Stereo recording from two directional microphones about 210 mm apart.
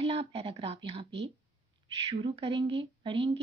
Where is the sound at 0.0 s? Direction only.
25° right (ahead or behind).